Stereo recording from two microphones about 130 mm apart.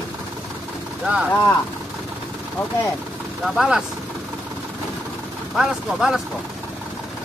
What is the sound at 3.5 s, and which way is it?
Speech, 5° right (ahead or behind).